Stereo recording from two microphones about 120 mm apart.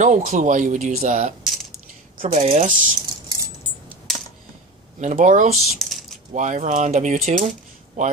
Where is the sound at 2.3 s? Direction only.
65° right (ahead or behind).